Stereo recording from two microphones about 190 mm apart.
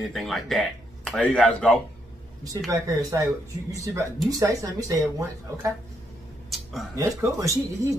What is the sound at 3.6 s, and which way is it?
Speech, 15° right (ahead or behind).